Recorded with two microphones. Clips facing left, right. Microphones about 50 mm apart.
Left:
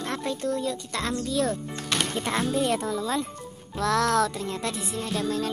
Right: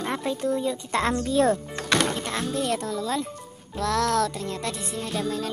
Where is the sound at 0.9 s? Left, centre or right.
Right.